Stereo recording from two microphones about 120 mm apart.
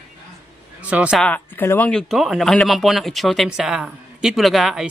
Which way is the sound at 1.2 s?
15° left (ahead or behind).